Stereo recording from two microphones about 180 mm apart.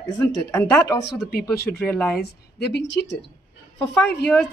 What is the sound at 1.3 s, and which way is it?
Speech, 60° left (ahead or behind).